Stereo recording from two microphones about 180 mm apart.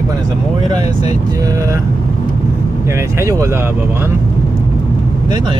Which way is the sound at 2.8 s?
15° right (ahead or behind).